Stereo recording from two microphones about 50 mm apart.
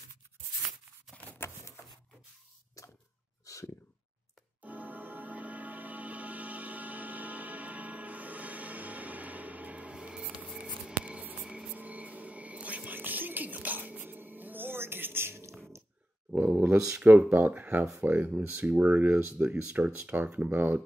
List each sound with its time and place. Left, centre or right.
3.5 s a sound: left
4.6 s music: right
9.9 s music: centre
10.9 s scissors: right
11.4 s a sound: centre
11.7 s a sound: right
12.9 s music: right
16.3 s a sound: right
16.7 s speech: centre
17.3 s speech: right
19.4 s speech: right
20.1 s speech: right